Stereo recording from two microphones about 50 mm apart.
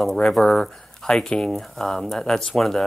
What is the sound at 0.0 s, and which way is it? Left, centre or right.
Speech, centre.